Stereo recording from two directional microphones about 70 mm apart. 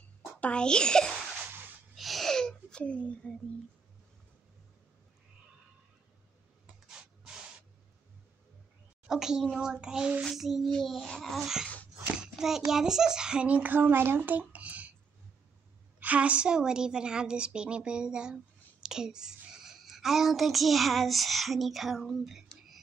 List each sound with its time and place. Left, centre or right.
0.4 s a child's voice: centre
2.0 s a sound: centre
2.8 s speech: centre
9.0 s a woman's voice: centre
10.2 s speech: centre
11.6 s a sound: left
12.2 s a child's voice: centre
16.0 s a woman's voice: centre